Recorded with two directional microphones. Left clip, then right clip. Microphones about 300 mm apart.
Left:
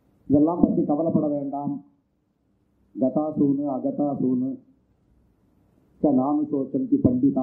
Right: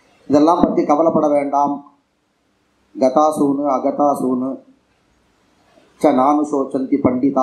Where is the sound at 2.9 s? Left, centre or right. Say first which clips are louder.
Right 11 dB; centre.